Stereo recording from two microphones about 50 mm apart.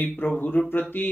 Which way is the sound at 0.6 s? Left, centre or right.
Left.